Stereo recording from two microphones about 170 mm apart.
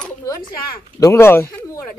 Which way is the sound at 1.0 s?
15° left (ahead or behind).